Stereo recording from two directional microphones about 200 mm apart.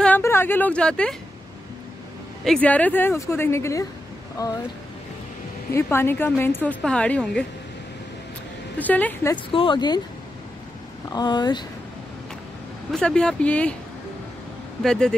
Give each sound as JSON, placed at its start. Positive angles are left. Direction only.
{"t": 0.0, "sound": "a woman's voice", "side_deg": 10}
{"t": 2.4, "sound": "a woman's voice", "side_deg": 5}
{"t": 5.7, "sound": "a woman's voice", "side_deg": 10}
{"t": 8.7, "sound": "a woman's voice", "side_deg": 10}
{"t": 9.5, "sound": "speech", "side_deg": 25}
{"t": 11.1, "sound": "speech", "side_deg": 20}
{"t": 12.9, "sound": "speech", "side_deg": 5}
{"t": 14.8, "sound": "speech", "side_deg": 5}